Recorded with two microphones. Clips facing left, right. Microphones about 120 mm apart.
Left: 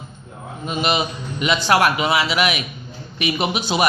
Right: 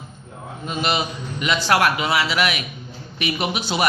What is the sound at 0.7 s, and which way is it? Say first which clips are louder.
A man's voice: left 2 dB; 15° left (ahead or behind).